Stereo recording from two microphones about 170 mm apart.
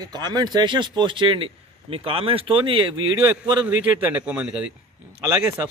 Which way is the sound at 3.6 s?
10° right (ahead or behind).